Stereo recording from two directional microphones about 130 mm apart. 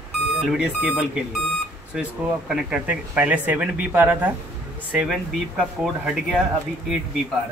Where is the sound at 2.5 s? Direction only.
5° right (ahead or behind).